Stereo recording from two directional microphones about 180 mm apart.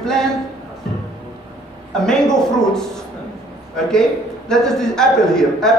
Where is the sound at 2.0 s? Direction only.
5° left (ahead or behind).